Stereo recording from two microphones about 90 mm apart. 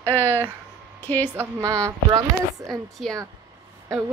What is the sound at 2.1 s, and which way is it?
Speech, 45° right (ahead or behind).